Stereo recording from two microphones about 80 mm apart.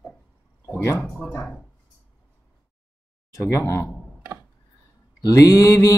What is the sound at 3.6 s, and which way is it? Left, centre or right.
Mantra, left.